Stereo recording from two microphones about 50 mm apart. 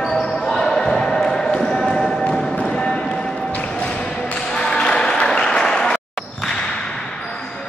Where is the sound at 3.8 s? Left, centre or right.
Left.